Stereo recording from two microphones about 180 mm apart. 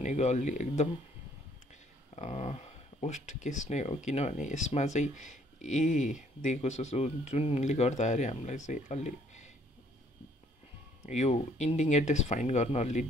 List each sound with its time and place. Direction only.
0.0 s speech: 40° left (ahead or behind)
2.1 s speech: 40° left (ahead or behind)
11.1 s speech: 40° left (ahead or behind)